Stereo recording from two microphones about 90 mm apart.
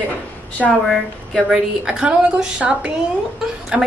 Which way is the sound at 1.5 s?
10° right (ahead or behind).